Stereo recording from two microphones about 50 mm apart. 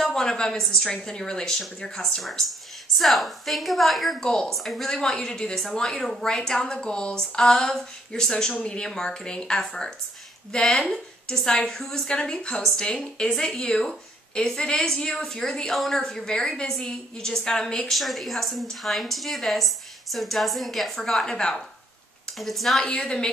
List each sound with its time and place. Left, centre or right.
0.0 s a woman's voice: centre
4.2 s a woman's voice: centre
4.9 s a woman's voice: centre
15.7 s a woman's voice: centre
16.0 s a woman's voice: centre
17.9 s a woman's voice: centre
22.4 s a woman's voice: centre
22.8 s a woman's voice: centre